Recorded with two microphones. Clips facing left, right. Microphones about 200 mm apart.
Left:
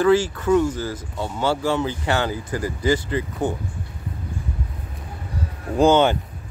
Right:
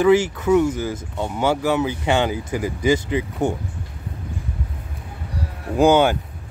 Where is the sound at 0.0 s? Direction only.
20° right (ahead or behind).